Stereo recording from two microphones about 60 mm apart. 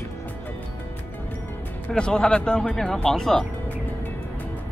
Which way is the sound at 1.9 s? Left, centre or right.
Centre.